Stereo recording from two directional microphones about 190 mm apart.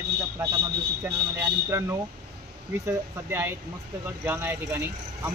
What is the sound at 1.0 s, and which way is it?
Speech, 15° right (ahead or behind).